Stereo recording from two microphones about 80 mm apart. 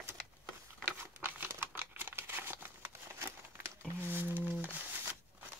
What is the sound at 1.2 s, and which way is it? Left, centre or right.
Crumpling, right.